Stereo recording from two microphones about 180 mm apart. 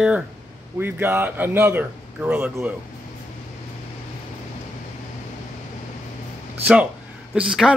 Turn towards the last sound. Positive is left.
turn(degrees=-5)  # may be behind; listen again after turning